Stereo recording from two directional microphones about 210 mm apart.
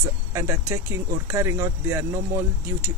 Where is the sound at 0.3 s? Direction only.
15° right (ahead or behind).